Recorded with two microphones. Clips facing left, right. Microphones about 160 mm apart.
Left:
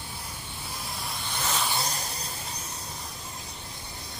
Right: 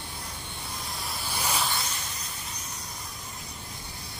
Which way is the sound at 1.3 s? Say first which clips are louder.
Even; 10° right (ahead or behind).